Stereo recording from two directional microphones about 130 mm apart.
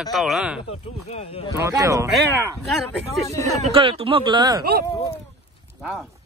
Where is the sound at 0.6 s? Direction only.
50° left (ahead or behind).